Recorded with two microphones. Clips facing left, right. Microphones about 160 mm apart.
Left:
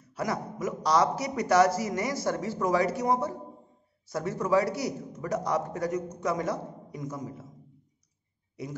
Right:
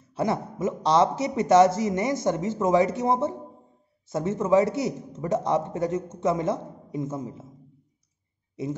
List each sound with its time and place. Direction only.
0.0 s a man's voice: 25° right (ahead or behind)
8.6 s a man's voice: 25° right (ahead or behind)